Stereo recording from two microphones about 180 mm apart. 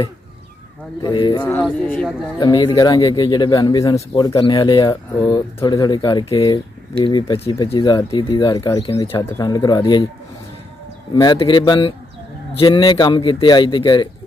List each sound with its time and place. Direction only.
1.0 s speech: 25° left (ahead or behind)
1.4 s speech: 10° left (ahead or behind)
2.3 s speech: 25° left (ahead or behind)
9.2 s speech: 20° left (ahead or behind)
11.1 s speech: 25° left (ahead or behind)